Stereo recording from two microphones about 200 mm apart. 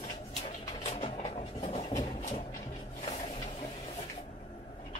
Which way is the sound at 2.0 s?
40° left (ahead or behind).